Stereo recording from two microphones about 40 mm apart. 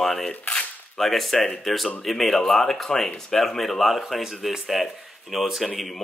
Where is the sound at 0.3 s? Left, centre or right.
Left.